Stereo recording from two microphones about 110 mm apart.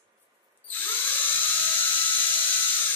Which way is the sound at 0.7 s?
15° left (ahead or behind).